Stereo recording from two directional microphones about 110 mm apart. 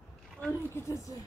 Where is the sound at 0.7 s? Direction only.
25° left (ahead or behind).